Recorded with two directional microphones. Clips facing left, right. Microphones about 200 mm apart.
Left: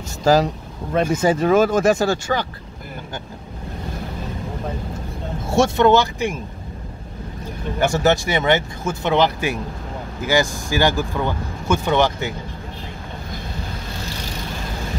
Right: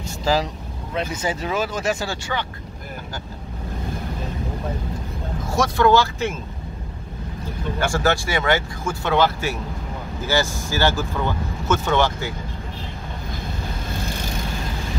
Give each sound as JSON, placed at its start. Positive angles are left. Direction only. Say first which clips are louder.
{"t": 0.2, "sound": "speech", "louder": "left 6 dB", "side_deg": 45}
{"t": 5.5, "sound": "speech", "louder": "left 3 dB", "side_deg": 25}
{"t": 7.8, "sound": "speech", "louder": "left 4 dB", "side_deg": 20}